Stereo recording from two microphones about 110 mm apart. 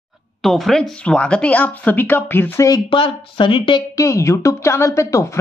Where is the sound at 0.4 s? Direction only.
Centre (ahead or behind); by 2.6 s 20° left (ahead or behind).